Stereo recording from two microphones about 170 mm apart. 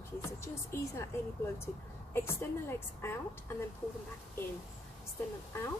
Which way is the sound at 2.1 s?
15° left (ahead or behind).